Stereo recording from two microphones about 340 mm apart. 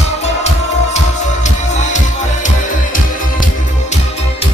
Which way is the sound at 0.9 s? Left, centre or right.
Left.